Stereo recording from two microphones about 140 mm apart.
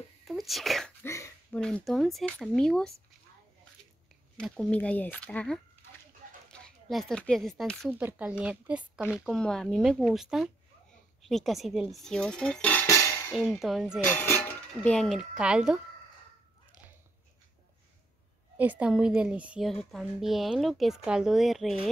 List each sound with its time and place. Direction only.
0.3 s sneeze: centre (ahead or behind)
1.0 s speech: 20° left (ahead or behind)
1.5 s a woman's voice: 5° left (ahead or behind)
4.4 s speech: 5° left (ahead or behind)
7.9 s a woman's voice: 15° right (ahead or behind); by 12.8 s 10° left (ahead or behind)
12.8 s music: 20° left (ahead or behind)
13.3 s a woman's voice: 5° left (ahead or behind)
14.0 s speech: 15° left (ahead or behind); by 15.8 s 5° right (ahead or behind)
18.6 s a woman's voice: 10° right (ahead or behind)